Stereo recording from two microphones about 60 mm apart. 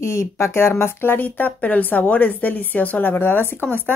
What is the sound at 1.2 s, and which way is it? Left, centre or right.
A woman's voice, left.